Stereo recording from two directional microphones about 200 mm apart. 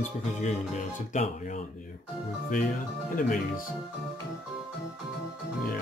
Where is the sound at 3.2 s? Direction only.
45° left (ahead or behind).